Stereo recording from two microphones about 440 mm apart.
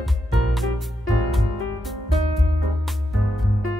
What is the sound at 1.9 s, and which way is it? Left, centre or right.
Music, centre.